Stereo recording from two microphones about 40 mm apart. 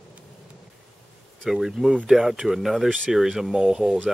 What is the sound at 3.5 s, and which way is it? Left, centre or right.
Speech, centre.